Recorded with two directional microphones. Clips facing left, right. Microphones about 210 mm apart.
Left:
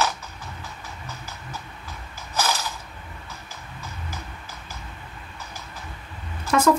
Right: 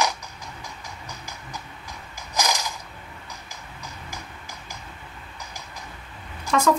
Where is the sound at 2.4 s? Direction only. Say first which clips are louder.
Even; 15° right (ahead or behind).